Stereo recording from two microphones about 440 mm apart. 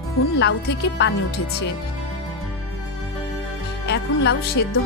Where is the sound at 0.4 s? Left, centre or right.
Left.